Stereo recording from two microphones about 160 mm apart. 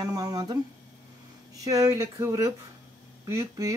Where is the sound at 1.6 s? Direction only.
20° right (ahead or behind).